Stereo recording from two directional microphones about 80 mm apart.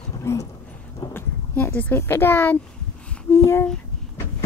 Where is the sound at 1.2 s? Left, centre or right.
Left.